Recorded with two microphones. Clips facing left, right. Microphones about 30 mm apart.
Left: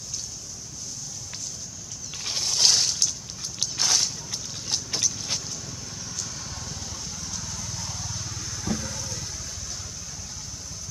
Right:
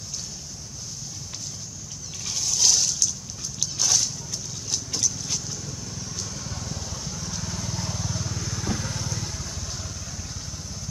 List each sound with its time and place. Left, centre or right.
2.2 s a sound: left
3.5 s vehicle: left
5.5 s vehicle: centre
8.5 s vehicle: centre